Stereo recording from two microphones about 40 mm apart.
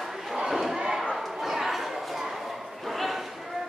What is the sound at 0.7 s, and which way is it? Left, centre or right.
Slam, centre.